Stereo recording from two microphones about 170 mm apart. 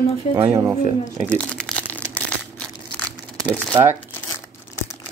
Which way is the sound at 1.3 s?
5° left (ahead or behind).